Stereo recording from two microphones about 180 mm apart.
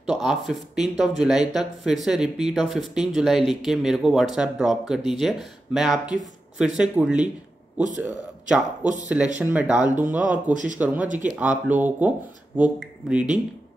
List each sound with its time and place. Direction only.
0.0 s speech: centre (ahead or behind)
10.5 s speech: 45° right (ahead or behind)
11.1 s speech: 10° right (ahead or behind)